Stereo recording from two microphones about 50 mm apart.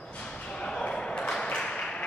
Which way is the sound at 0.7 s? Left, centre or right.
Centre.